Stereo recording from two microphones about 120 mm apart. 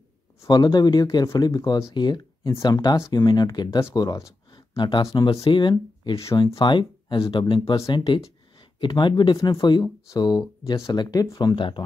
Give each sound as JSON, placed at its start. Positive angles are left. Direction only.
{"t": 0.5, "sound": "speech", "side_deg": 35}
{"t": 1.0, "sound": "speech", "side_deg": 30}
{"t": 6.1, "sound": "speech", "side_deg": 25}
{"t": 6.6, "sound": "speech", "side_deg": 40}